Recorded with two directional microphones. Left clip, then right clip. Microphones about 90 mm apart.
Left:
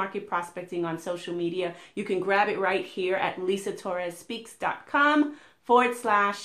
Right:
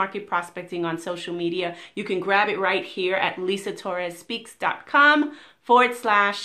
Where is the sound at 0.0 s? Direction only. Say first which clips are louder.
Right 4 dB; 20° right (ahead or behind).